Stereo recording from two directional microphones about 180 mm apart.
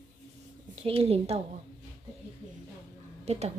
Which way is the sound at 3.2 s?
35° right (ahead or behind).